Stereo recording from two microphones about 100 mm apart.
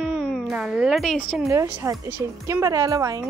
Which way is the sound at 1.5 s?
30° right (ahead or behind).